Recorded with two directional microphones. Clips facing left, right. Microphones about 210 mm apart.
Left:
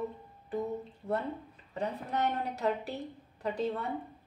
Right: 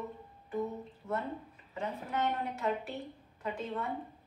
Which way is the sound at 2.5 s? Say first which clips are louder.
Left 2 dB; 40° left (ahead or behind).